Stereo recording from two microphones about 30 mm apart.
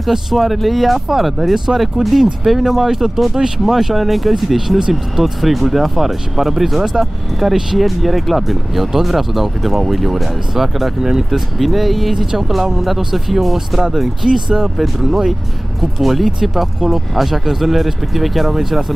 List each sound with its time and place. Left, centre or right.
0.3 s speech: centre
3.3 s speech: right
3.6 s speech: centre
14.3 s speech: right
15.0 s speech: centre